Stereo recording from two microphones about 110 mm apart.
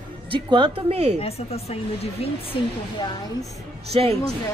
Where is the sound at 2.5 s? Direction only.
50° left (ahead or behind).